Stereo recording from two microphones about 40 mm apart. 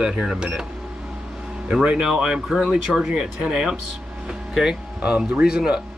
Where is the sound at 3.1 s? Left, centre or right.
Right.